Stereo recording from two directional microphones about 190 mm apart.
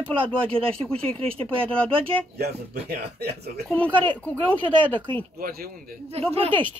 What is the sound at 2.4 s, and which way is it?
Speech, 60° right (ahead or behind).